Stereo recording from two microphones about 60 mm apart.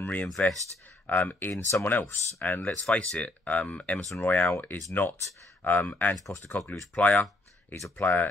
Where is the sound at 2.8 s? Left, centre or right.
Centre.